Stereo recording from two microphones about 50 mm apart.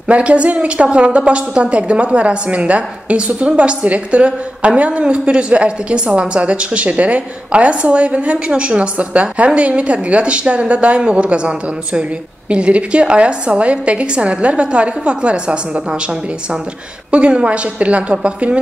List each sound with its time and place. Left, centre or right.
0.1 s a woman's voice: right
17.1 s a woman's voice: right